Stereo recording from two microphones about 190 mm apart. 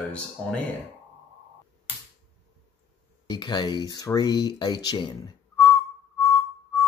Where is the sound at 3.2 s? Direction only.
25° left (ahead or behind).